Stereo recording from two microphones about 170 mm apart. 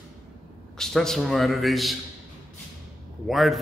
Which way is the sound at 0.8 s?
5° left (ahead or behind).